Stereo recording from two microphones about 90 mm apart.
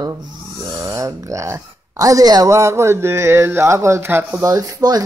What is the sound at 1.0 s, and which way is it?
Speech, 35° right (ahead or behind).